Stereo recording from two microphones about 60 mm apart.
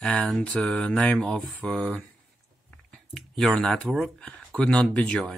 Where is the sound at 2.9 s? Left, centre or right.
Centre.